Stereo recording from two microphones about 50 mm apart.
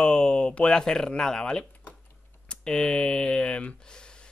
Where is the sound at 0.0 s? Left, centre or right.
Centre.